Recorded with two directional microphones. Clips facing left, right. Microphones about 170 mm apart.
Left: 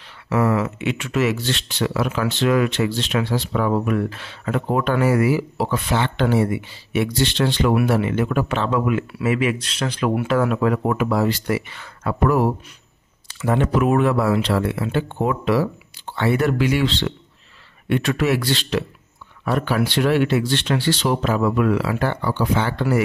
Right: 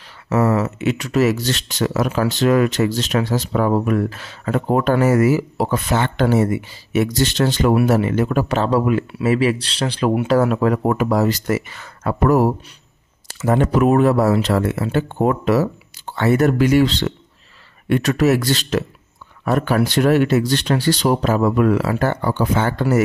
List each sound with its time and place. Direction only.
0.3 s speech: 40° right (ahead or behind)